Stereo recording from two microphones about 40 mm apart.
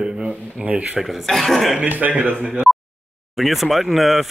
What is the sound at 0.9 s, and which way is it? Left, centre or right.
Speech, centre.